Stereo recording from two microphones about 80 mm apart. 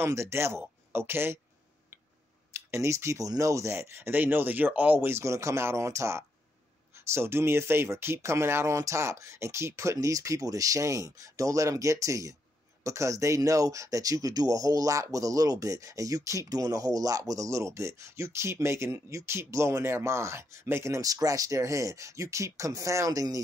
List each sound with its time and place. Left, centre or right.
0.0 s speech: right
2.5 s speech: right